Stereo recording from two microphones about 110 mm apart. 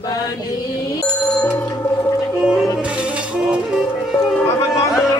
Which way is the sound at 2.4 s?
Centre (ahead or behind).